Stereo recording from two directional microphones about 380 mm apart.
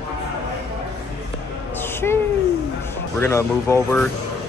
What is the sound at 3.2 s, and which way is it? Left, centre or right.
Speech, centre.